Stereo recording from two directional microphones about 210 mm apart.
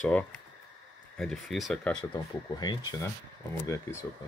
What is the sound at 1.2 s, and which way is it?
Speech, centre (ahead or behind).